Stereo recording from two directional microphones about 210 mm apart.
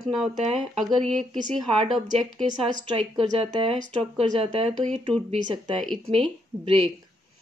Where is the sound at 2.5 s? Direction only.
25° right (ahead or behind).